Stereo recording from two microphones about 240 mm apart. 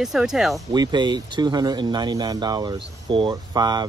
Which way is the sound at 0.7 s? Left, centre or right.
Centre.